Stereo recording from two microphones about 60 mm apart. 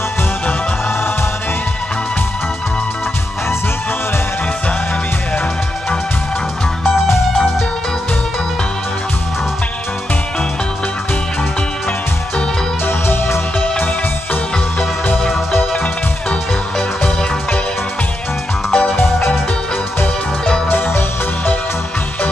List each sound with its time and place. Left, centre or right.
12.8 s music: left
18.7 s music: centre
20.7 s music: left